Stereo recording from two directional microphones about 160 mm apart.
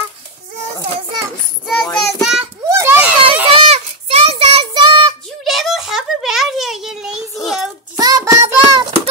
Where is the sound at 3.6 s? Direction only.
40° right (ahead or behind).